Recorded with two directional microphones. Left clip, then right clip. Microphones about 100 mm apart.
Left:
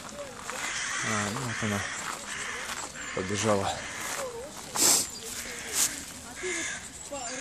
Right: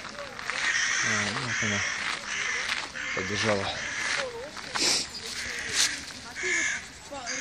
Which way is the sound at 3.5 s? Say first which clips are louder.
Left 3 dB; 20° left (ahead or behind).